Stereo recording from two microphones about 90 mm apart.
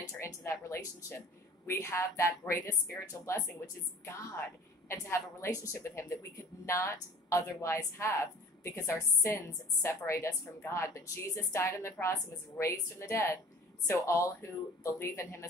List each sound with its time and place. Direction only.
0.2 s a woman's voice: 30° left (ahead or behind)
5.0 s a woman's voice: 30° left (ahead or behind)